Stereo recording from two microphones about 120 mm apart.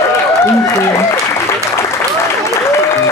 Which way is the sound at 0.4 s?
20° left (ahead or behind).